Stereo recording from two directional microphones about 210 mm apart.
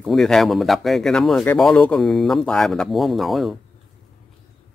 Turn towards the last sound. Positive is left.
turn(degrees=0)  # may be behind; listen again after turning